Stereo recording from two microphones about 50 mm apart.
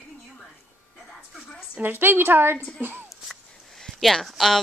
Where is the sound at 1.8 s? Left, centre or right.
Right.